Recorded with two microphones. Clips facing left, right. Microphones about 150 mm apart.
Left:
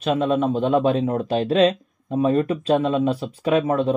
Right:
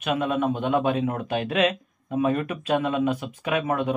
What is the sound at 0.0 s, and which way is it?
Speech, 35° left (ahead or behind).